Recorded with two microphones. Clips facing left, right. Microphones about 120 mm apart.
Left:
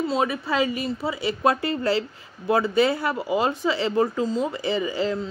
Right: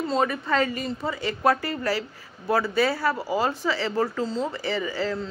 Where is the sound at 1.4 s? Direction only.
20° left (ahead or behind).